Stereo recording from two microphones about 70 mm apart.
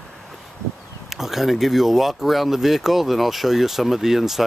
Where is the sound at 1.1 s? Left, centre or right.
Centre.